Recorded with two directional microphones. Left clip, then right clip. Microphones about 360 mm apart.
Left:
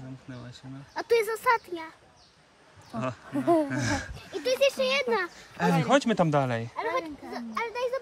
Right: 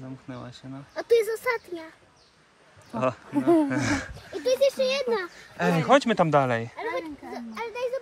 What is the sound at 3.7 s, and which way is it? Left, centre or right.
Speech, centre.